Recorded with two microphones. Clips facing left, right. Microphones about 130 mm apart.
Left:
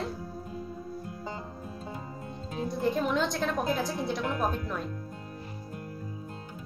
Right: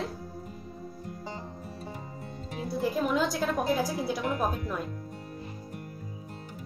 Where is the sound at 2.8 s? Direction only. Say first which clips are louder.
Right 1 dB; centre (ahead or behind).